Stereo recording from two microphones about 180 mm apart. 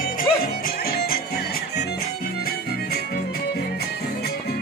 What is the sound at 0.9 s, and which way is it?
Music, 55° left (ahead or behind).